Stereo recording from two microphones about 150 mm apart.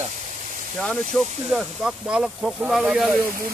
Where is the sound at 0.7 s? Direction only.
5° left (ahead or behind).